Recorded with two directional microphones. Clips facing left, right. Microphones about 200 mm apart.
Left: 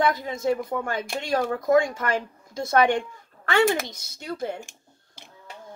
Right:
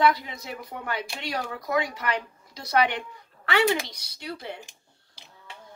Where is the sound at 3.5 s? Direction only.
50° left (ahead or behind).